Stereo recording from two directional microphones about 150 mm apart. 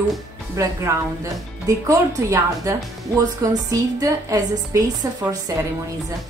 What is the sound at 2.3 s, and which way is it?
A woman's voice, 20° right (ahead or behind).